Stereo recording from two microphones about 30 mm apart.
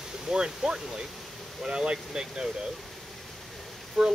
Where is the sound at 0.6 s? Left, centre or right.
Centre.